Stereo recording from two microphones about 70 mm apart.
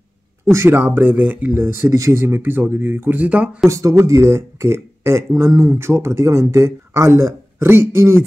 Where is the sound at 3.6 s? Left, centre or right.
Right.